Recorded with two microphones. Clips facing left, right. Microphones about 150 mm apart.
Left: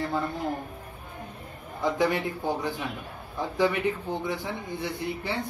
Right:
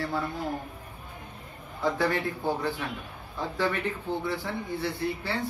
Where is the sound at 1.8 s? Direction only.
15° left (ahead or behind).